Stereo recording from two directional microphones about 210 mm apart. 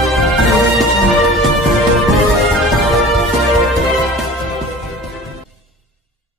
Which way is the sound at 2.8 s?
Centre (ahead or behind).